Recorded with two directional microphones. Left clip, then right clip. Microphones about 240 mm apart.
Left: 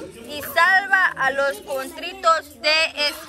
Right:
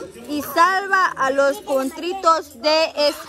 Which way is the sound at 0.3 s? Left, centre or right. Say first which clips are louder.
Right 5 dB; right.